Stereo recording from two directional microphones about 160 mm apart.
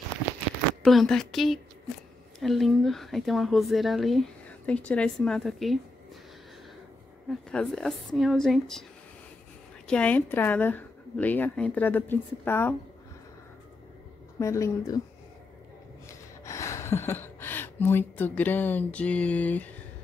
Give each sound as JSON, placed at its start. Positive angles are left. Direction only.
{"t": 0.8, "sound": "speech", "side_deg": 5}
{"t": 7.2, "sound": "speech", "side_deg": 5}
{"t": 9.8, "sound": "speech", "side_deg": 10}
{"t": 14.4, "sound": "speech", "side_deg": 20}
{"t": 16.4, "sound": "speech", "side_deg": 20}